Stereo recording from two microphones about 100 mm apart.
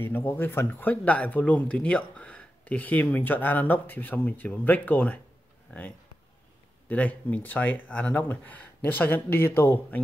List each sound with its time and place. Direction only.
0.0 s speech: 20° left (ahead or behind)